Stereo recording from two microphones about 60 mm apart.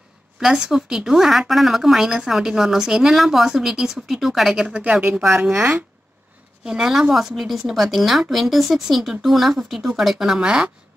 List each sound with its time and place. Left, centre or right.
0.4 s a woman's voice: centre
4.6 s a woman's voice: centre
6.6 s a woman's voice: centre